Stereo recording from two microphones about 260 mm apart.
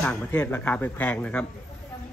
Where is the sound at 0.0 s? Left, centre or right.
Centre.